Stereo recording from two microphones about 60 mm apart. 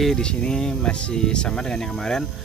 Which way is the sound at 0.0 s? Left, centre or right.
Centre.